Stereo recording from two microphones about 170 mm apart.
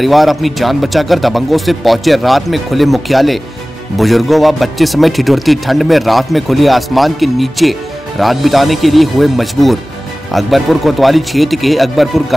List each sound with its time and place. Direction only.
0.0 s a man's voice: centre (ahead or behind)